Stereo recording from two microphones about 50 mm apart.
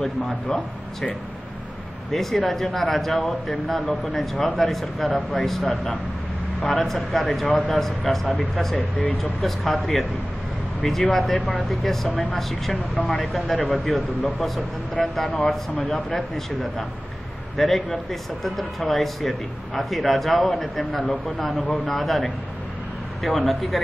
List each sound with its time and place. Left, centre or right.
2.1 s speech: centre
8.7 s speech: left
9.2 s speech: centre
15.1 s speech: centre
17.6 s speech: centre